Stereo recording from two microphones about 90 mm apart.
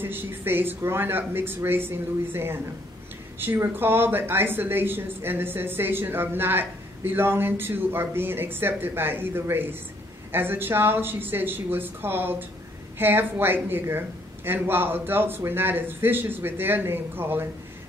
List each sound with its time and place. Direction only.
0.0 s speech: 25° right (ahead or behind)